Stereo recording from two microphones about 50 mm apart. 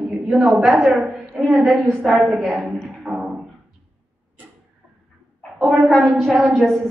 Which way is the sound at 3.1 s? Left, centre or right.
Right.